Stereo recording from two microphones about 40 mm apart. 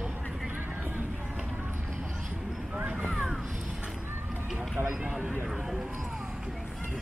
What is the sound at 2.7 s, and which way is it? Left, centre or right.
Vehicle, right.